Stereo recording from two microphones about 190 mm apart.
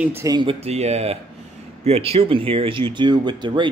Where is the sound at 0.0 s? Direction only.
15° right (ahead or behind).